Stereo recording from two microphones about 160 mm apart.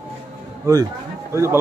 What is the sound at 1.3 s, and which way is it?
Speech, 15° right (ahead or behind).